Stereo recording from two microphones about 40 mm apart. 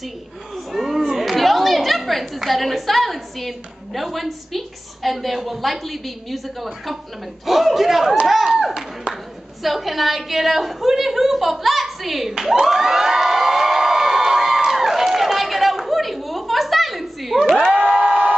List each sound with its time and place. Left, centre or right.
0.7 s a man's voice: centre
9.1 s a sound: centre
17.8 s crowd: centre